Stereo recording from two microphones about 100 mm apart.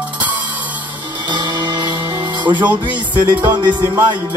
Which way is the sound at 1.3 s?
50° right (ahead or behind).